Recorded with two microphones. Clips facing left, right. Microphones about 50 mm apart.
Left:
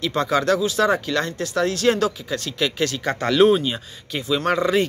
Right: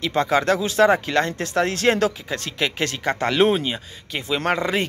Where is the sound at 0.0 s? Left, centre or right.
Right.